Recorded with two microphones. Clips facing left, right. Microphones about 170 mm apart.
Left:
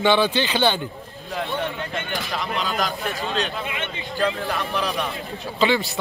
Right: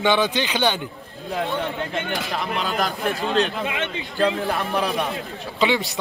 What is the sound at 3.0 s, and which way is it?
Speech, 50° right (ahead or behind).